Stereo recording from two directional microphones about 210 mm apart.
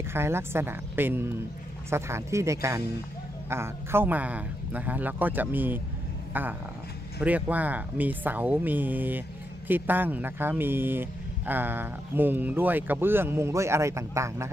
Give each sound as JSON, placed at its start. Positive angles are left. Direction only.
{"t": 0.1, "sound": "speech", "side_deg": -10}